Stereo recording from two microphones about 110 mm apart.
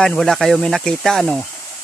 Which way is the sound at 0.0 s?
5° left (ahead or behind).